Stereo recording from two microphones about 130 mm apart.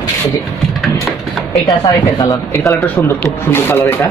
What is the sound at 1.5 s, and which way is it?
Speech, 30° left (ahead or behind).